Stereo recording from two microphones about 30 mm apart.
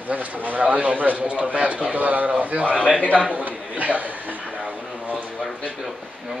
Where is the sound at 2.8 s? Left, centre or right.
Left.